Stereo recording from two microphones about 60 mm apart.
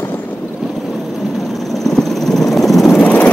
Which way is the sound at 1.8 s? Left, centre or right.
Centre.